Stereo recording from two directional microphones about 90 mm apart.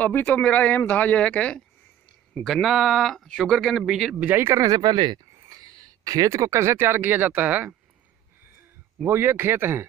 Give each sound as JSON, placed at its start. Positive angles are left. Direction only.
{"t": 0.0, "sound": "speech", "side_deg": 20}
{"t": 2.4, "sound": "speech", "side_deg": 0}
{"t": 4.3, "sound": "speech", "side_deg": -25}
{"t": 4.6, "sound": "speech", "side_deg": -45}
{"t": 9.0, "sound": "speech", "side_deg": -25}